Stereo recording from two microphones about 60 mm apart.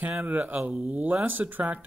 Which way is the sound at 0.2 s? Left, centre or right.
Right.